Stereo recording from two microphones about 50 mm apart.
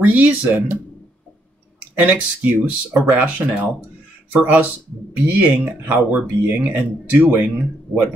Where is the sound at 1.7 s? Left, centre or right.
Right.